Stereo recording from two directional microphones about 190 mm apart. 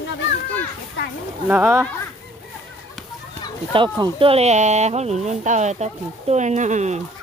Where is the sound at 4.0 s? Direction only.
30° right (ahead or behind).